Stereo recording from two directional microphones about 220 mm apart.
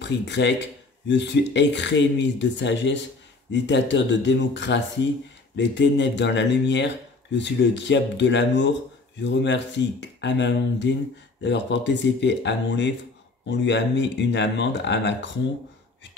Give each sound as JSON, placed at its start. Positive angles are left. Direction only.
{"t": 0.0, "sound": "speech", "side_deg": 50}